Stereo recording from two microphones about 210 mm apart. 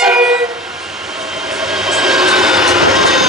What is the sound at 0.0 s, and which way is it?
Train, centre (ahead or behind).